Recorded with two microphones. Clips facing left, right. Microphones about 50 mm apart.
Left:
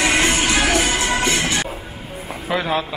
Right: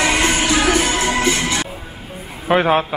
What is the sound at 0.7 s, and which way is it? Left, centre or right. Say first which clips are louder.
Music: right 2 dB; centre.